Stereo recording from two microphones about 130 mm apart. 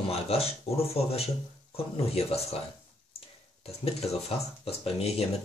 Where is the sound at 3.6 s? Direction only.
50° left (ahead or behind).